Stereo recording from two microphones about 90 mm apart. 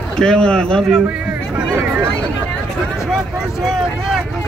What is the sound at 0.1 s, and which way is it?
Speech, 10° left (ahead or behind).